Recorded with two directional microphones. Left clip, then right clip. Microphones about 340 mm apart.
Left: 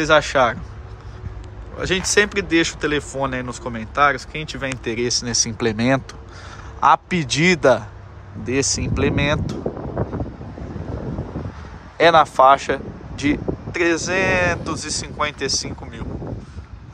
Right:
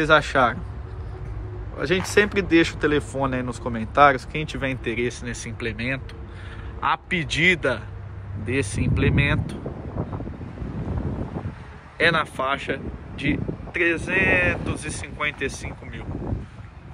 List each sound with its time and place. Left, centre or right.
0.0 s speech: centre
1.8 s speech: centre
12.0 s speech: centre